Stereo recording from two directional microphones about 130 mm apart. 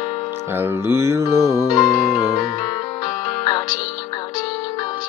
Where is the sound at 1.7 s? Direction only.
30° left (ahead or behind).